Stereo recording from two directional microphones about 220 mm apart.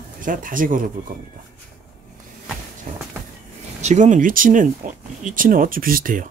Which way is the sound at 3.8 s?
30° right (ahead or behind).